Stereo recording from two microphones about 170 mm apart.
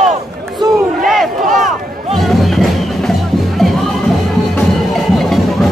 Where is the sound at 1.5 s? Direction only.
50° right (ahead or behind).